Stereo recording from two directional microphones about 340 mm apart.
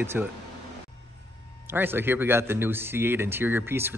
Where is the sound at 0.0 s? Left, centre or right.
Centre.